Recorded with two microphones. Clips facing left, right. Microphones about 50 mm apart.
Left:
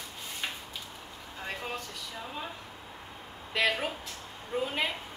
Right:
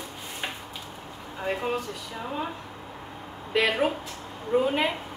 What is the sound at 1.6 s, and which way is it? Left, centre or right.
Speech, centre.